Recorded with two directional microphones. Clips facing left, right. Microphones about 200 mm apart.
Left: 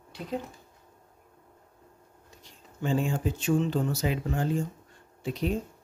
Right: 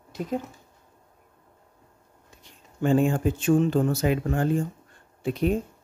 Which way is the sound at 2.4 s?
55° right (ahead or behind).